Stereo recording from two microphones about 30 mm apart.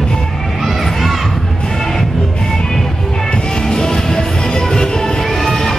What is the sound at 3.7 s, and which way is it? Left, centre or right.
Music, left.